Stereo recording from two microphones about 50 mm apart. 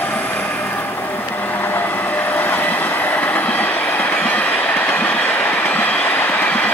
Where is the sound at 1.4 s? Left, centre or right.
Left.